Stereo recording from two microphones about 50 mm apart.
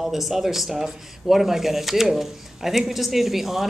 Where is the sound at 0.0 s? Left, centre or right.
Centre.